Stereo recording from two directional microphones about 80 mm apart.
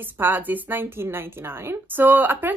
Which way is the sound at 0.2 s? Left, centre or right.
Right.